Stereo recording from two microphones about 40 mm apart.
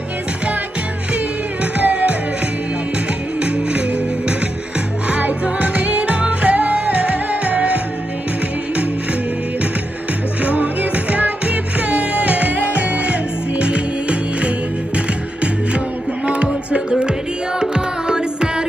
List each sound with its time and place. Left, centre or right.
1.1 s music: right
3.3 s music: right
5.1 s music: right
10.4 s music: right
16.3 s music: right